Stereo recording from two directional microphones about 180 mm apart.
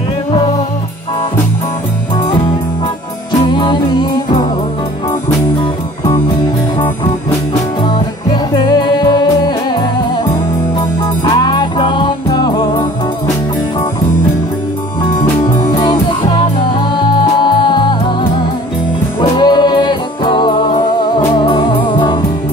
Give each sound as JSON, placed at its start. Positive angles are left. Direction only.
{"t": 3.5, "sound": "music", "side_deg": 25}
{"t": 7.8, "sound": "music", "side_deg": 25}
{"t": 11.2, "sound": "music", "side_deg": 25}
{"t": 15.4, "sound": "music", "side_deg": 25}